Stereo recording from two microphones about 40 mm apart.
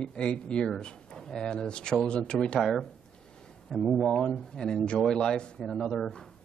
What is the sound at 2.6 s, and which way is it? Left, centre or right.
Speech, centre.